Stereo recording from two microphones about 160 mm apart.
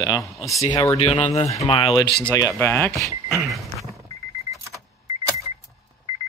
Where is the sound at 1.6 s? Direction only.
35° left (ahead or behind).